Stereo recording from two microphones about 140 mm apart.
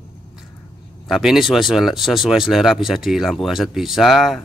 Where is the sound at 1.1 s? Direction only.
Centre (ahead or behind).